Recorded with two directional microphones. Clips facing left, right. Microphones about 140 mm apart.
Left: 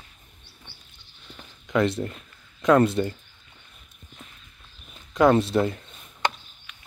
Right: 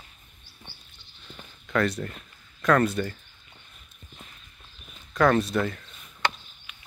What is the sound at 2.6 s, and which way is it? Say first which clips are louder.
Speech: left 4 dB; 25° left (ahead or behind).